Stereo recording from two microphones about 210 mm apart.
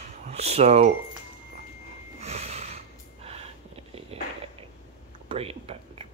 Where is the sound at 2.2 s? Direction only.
30° right (ahead or behind).